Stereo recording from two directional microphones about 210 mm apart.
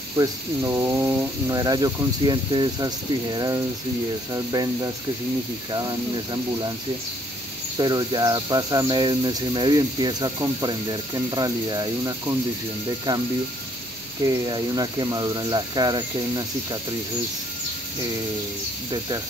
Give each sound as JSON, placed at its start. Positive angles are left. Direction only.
{"t": 0.2, "sound": "speech", "side_deg": -15}
{"t": 7.7, "sound": "speech", "side_deg": -20}
{"t": 14.2, "sound": "speech", "side_deg": -20}
{"t": 18.9, "sound": "speech", "side_deg": -20}